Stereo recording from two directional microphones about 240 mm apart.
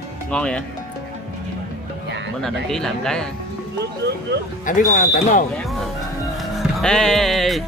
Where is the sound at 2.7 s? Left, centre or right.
Centre.